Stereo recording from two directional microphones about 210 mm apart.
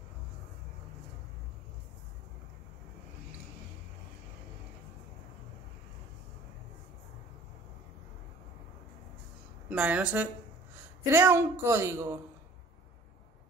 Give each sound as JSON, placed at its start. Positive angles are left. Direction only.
{"t": 9.7, "sound": "speech", "side_deg": -5}